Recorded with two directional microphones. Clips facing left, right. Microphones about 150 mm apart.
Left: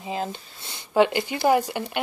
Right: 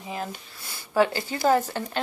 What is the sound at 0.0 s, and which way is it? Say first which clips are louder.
Speech: left 4 dB; 25° left (ahead or behind).